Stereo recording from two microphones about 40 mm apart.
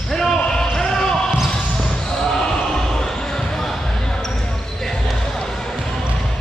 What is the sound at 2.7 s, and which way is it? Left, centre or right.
Basketball bounce, centre.